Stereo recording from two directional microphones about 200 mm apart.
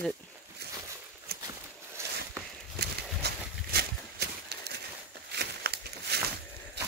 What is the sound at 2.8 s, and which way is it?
Horse, 50° right (ahead or behind).